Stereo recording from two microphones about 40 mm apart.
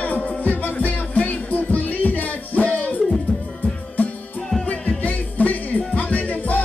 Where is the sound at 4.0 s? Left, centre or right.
Left.